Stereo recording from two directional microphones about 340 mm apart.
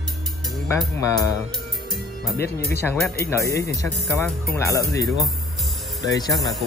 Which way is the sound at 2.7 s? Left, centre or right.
Centre.